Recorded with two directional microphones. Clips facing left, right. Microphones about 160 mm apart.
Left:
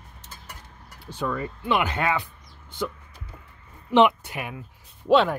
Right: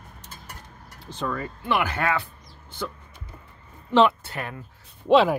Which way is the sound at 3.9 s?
15° left (ahead or behind).